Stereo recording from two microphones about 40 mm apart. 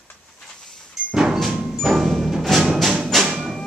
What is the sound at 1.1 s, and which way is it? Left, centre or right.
Music, centre.